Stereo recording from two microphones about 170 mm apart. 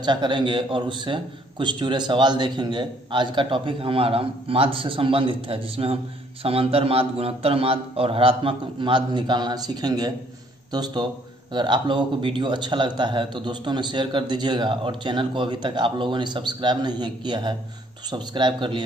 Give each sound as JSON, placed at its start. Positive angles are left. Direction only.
{"t": 0.0, "sound": "a man's voice", "side_deg": -25}